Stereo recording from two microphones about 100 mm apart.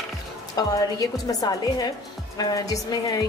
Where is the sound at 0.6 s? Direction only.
40° left (ahead or behind).